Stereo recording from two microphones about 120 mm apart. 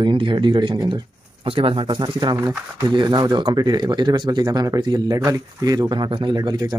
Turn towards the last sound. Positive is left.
turn(degrees=-35)  # may be behind; listen again after turning